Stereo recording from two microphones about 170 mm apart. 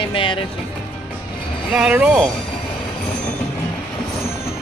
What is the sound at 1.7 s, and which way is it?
Speech, 5° right (ahead or behind).